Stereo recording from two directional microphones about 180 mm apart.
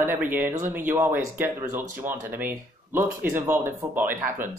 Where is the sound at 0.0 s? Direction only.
10° right (ahead or behind).